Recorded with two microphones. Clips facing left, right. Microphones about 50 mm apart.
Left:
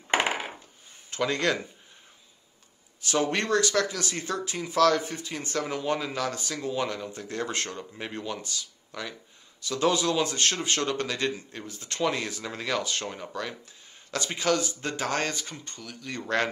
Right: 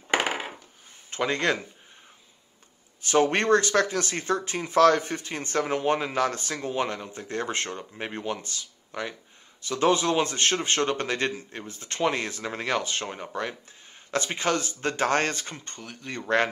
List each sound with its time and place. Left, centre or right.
1.1 s speech: right
3.0 s speech: right
16.2 s speech: right